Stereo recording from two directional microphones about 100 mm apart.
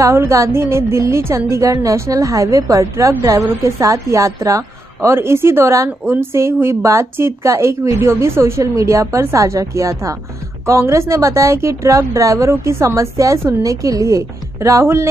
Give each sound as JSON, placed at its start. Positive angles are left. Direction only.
{"t": 0.0, "sound": "a woman's voice", "side_deg": -30}